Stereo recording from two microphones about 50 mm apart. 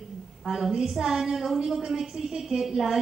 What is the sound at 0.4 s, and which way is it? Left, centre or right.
A woman's voice, centre.